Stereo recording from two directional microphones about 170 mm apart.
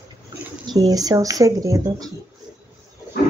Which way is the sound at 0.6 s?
25° right (ahead or behind).